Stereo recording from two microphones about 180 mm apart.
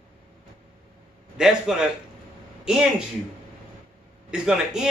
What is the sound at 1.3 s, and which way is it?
Speech, centre (ahead or behind).